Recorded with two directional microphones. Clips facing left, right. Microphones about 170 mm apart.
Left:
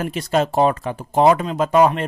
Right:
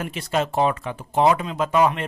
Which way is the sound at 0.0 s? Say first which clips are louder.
Left 4 dB; 40° left (ahead or behind).